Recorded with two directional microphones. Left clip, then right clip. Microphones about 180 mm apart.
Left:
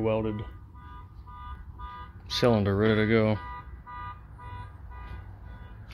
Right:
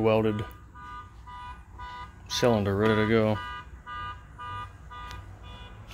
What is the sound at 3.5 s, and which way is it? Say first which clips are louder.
Car alarm: right 3 dB; 80° right.